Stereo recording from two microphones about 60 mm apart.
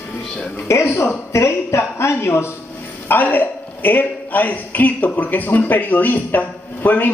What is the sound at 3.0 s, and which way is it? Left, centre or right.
A man's voice, left.